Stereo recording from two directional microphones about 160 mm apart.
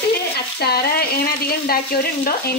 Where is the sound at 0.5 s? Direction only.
75° left (ahead or behind).